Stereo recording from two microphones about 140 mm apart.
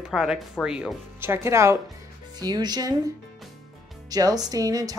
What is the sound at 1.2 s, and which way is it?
Speech, 20° right (ahead or behind).